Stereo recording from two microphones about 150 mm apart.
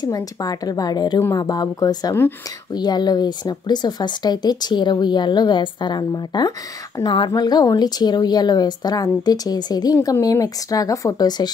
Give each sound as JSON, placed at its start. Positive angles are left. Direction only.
{"t": 0.0, "sound": "a woman's voice", "side_deg": 25}